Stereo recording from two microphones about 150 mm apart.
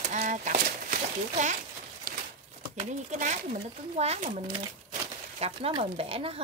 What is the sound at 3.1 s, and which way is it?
Speech, 55° right (ahead or behind).